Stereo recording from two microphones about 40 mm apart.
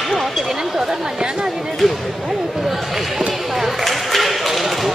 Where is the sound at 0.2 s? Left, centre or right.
Centre.